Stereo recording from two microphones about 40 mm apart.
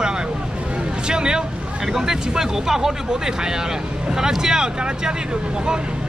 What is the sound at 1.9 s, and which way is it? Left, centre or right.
Speech, centre.